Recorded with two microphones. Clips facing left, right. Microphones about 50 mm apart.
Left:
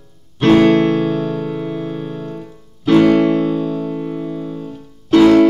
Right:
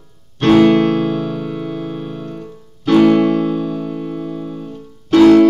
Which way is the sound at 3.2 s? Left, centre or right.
Left.